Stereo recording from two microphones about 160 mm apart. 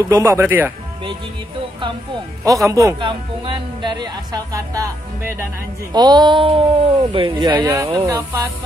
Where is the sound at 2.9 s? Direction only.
30° right (ahead or behind).